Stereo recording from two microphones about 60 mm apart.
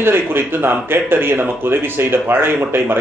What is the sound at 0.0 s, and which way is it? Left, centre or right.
A man's voice, right.